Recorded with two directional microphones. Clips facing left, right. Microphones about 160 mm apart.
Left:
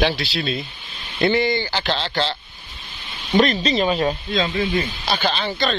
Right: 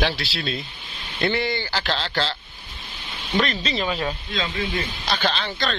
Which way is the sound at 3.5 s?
20° left (ahead or behind).